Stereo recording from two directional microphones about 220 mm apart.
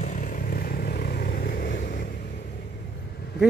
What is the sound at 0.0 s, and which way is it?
Vehicle, 35° left (ahead or behind).